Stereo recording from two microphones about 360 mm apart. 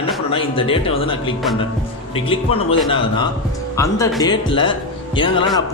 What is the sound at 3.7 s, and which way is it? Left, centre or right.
Speech, centre.